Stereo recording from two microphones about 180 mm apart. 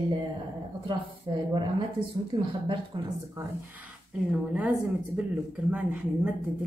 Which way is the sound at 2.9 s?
25° right (ahead or behind).